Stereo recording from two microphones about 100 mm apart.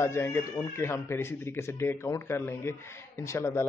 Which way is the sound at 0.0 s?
25° left (ahead or behind).